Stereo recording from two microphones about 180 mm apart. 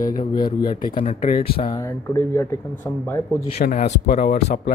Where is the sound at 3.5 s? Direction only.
40° left (ahead or behind).